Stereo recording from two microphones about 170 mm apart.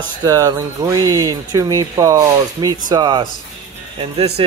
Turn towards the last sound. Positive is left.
turn(degrees=-35)  # may be behind; listen again after turning